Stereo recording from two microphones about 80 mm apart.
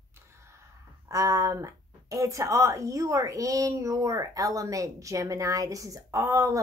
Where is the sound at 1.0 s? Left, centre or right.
Right.